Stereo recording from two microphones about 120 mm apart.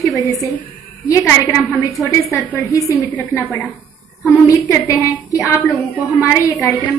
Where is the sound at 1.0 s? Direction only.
25° left (ahead or behind).